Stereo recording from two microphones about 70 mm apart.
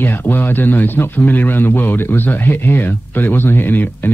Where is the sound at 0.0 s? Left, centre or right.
Left.